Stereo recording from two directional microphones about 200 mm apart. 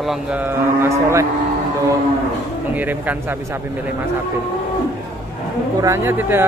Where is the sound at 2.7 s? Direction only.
10° right (ahead or behind).